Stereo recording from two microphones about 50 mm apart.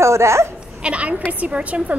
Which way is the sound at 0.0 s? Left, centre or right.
Right.